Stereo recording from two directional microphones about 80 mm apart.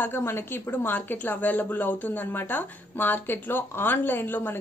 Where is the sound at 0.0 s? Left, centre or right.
Left.